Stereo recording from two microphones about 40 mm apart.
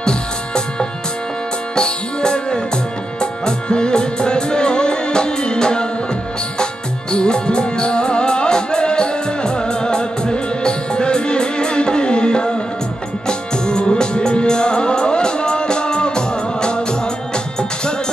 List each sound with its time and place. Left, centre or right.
1.8 s music: left